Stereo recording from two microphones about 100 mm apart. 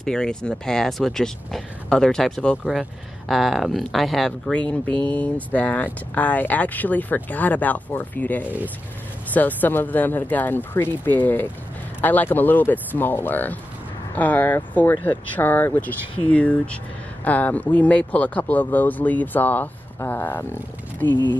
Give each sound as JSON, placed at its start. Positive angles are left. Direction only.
{"t": 0.0, "sound": "speech", "side_deg": 5}